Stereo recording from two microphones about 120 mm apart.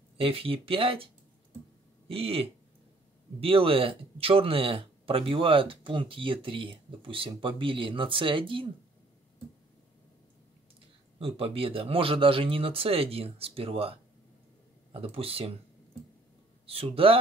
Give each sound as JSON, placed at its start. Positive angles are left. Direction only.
{"t": 0.2, "sound": "speech", "side_deg": -50}
{"t": 2.0, "sound": "speech", "side_deg": -50}
{"t": 11.1, "sound": "speech", "side_deg": -50}
{"t": 16.6, "sound": "speech", "side_deg": -55}